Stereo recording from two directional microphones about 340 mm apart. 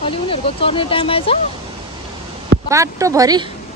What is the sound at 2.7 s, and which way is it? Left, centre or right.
Speech, centre.